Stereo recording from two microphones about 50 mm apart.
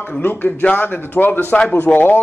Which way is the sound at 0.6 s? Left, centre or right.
Left.